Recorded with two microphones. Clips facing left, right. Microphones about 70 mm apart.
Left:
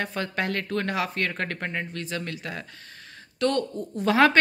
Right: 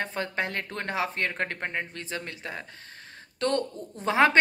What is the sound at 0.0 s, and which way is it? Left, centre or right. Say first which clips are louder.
A woman's voice: left 2 dB; right.